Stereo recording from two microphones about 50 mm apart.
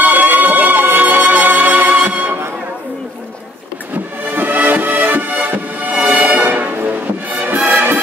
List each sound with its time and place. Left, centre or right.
0.0 s music: right
4.3 s music: right